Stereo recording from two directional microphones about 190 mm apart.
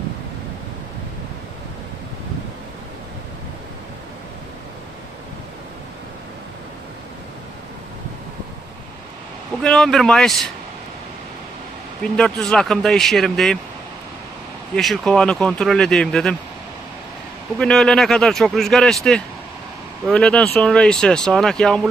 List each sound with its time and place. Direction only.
9.6 s speech: 5° left (ahead or behind)
12.0 s speech: 5° left (ahead or behind)
14.8 s speech: centre (ahead or behind)
17.6 s speech: 5° left (ahead or behind)